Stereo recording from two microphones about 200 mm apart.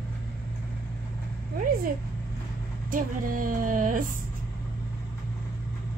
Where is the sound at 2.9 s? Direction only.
45° right (ahead or behind).